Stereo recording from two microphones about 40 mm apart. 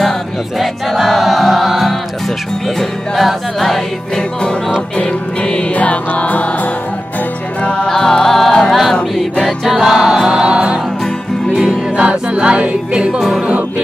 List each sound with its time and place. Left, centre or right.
0.6 s music: centre
4.9 s music: left
5.8 s music: left
7.6 s music: left
7.9 s music: centre
9.7 s choir: centre
12.0 s music: right